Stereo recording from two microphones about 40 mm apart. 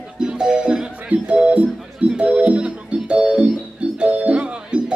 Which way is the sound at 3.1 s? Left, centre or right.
Centre.